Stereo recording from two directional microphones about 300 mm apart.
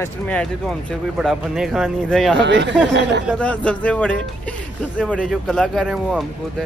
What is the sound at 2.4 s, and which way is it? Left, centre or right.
Speech, right.